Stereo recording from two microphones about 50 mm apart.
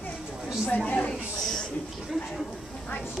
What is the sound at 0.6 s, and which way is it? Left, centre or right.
Speech, left.